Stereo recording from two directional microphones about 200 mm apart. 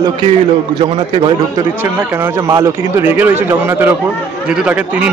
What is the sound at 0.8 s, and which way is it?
Speech, 25° right (ahead or behind).